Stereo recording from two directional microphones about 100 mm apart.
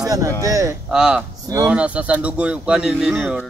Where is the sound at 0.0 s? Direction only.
40° right (ahead or behind).